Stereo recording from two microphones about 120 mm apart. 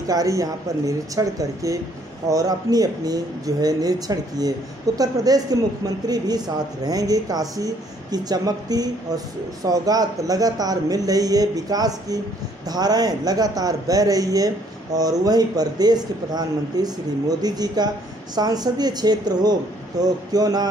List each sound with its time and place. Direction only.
0.1 s speech: 30° right (ahead or behind)